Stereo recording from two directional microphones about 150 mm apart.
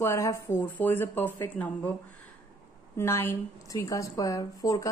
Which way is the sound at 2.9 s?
15° left (ahead or behind).